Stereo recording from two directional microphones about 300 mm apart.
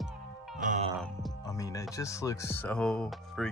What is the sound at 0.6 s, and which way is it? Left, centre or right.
Music, right.